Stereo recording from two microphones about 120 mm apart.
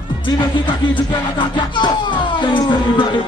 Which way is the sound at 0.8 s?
40° left (ahead or behind).